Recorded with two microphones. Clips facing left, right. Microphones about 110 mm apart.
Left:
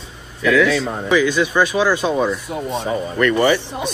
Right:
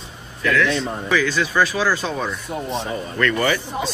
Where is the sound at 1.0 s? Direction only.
15° left (ahead or behind).